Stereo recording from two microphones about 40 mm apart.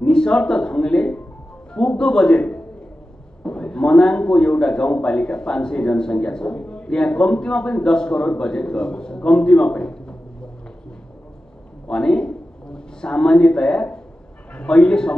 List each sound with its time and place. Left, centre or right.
0.0 s a man's voice: left
11.9 s a man's voice: left